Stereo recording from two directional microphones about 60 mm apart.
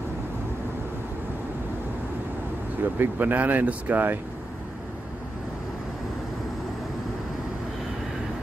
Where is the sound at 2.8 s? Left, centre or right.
Right.